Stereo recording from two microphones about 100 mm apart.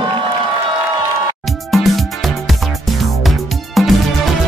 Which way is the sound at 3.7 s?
Centre (ahead or behind).